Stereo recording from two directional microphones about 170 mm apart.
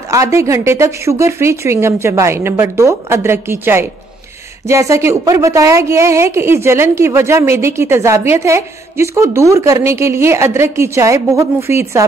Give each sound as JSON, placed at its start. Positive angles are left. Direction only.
{"t": 0.1, "sound": "a woman's voice", "side_deg": -20}